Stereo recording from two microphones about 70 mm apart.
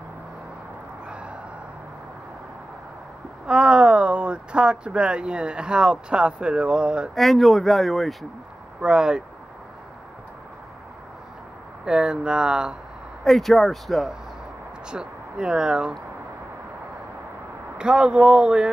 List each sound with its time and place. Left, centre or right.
1.0 s crow: centre
3.4 s speech: centre
7.2 s speech: centre
8.8 s speech: centre
11.8 s speech: centre
13.2 s speech: centre
14.9 s speech: centre
17.7 s speech: centre